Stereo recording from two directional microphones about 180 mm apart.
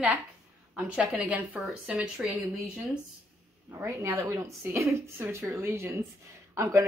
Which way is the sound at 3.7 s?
15° right (ahead or behind).